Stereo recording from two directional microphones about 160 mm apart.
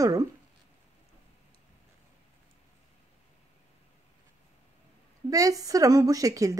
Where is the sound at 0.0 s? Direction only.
20° right (ahead or behind).